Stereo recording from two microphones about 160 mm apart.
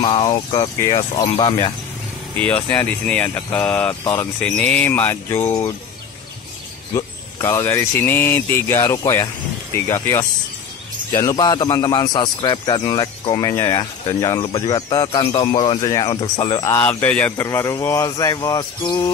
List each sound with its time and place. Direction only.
0.0 s speech: 30° left (ahead or behind)
2.4 s speech: 10° left (ahead or behind)
6.9 s speech: 20° left (ahead or behind)
13.5 s speech: 20° left (ahead or behind)
16.6 s speech: 15° left (ahead or behind)